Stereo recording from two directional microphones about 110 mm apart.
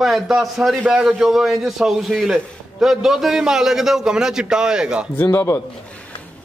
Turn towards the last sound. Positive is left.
turn(degrees=25)  # may be behind; listen again after turning